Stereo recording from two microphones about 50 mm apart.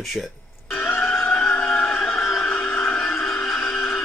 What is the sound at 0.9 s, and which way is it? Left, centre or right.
Music, left.